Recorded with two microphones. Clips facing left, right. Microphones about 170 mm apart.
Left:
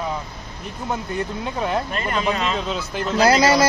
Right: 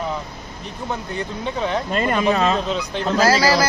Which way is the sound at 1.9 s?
25° right (ahead or behind).